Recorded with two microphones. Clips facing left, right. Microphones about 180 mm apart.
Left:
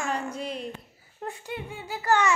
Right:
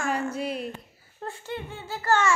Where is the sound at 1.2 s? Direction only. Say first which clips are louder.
Right 1 dB; 15° left (ahead or behind).